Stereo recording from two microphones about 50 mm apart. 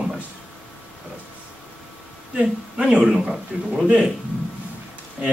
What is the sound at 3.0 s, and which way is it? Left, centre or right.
Speech, centre.